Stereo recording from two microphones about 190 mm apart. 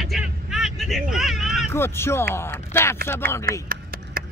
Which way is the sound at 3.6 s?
50° right (ahead or behind).